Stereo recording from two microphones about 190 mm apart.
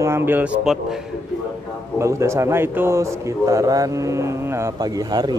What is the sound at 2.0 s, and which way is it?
Speech, 15° right (ahead or behind).